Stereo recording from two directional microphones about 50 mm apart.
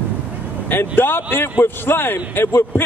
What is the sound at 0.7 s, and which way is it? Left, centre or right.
Speech, left.